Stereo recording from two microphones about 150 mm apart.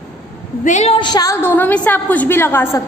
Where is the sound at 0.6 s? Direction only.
50° left (ahead or behind).